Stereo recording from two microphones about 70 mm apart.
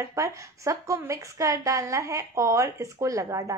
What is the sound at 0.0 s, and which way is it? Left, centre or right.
A woman's voice, right.